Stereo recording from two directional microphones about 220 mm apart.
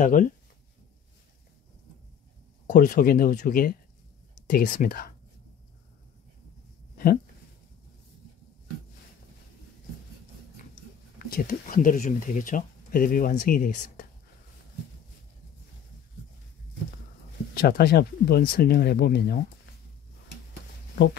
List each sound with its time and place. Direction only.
0.0 s speech: 35° left (ahead or behind)
2.6 s speech: 40° left (ahead or behind)
11.1 s speech: 40° left (ahead or behind)
17.6 s speech: 45° left (ahead or behind)